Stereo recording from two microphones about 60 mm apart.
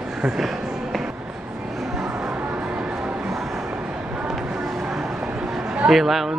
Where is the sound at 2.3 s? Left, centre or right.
Right.